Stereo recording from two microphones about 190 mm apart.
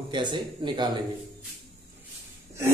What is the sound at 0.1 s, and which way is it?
Speech, 25° right (ahead or behind).